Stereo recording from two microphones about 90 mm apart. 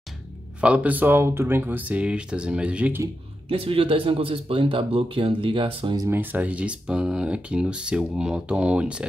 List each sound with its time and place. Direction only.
0.6 s speech: 15° right (ahead or behind)
3.4 s speech: 90° right; by 5.9 s 75° right (ahead or behind)
6.0 s speech: 20° right (ahead or behind)